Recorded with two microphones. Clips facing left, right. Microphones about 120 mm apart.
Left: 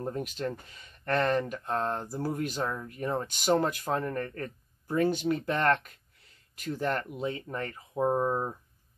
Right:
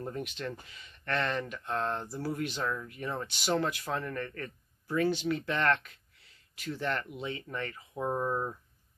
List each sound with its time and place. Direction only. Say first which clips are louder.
0.0 s speech: left 4 dB; 40° left (ahead or behind)